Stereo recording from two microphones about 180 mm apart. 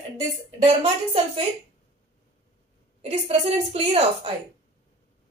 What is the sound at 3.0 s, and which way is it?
A woman's voice, 35° right (ahead or behind).